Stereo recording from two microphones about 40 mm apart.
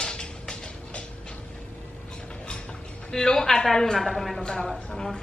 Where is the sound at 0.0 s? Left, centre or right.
Left.